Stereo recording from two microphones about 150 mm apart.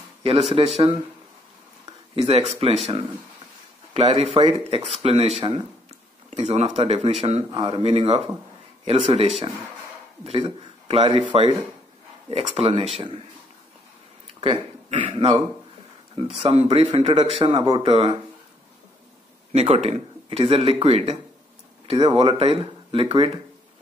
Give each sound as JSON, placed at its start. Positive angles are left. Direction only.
{"t": 0.2, "sound": "speech", "side_deg": -40}
{"t": 2.1, "sound": "speech", "side_deg": -45}
{"t": 3.9, "sound": "speech", "side_deg": -40}
{"t": 7.5, "sound": "speech", "side_deg": -35}
{"t": 10.9, "sound": "speech", "side_deg": -40}
{"t": 14.4, "sound": "speech", "side_deg": -35}
{"t": 19.5, "sound": "speech", "side_deg": -45}